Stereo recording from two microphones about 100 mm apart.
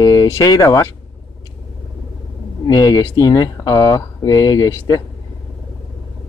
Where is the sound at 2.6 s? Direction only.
40° left (ahead or behind).